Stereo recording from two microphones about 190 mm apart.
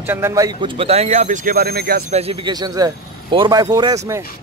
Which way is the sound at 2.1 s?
30° right (ahead or behind).